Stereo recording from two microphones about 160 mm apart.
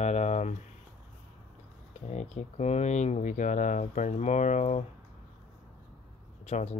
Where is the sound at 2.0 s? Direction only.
45° left (ahead or behind).